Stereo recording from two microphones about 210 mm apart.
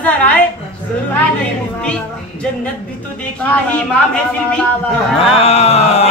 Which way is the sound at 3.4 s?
5° left (ahead or behind).